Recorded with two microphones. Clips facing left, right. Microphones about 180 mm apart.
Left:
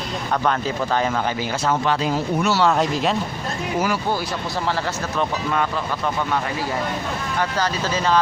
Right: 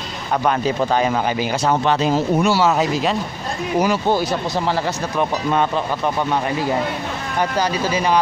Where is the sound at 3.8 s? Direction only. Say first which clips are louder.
Right 6 dB; 20° right (ahead or behind).